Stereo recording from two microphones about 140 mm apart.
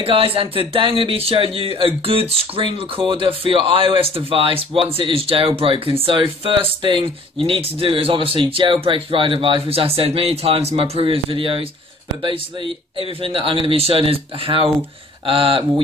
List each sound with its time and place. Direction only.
0.0 s speech: 40° right (ahead or behind)